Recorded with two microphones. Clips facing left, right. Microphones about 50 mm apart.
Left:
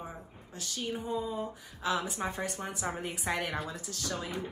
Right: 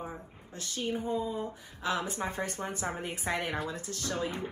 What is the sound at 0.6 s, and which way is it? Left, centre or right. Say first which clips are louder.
A woman's voice: right 2 dB; right.